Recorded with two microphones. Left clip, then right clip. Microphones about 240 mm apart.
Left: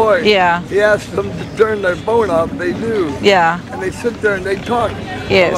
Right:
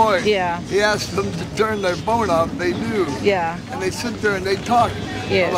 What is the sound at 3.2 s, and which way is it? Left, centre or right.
Speech, centre.